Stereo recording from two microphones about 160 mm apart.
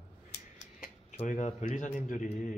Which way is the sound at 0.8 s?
45° left (ahead or behind).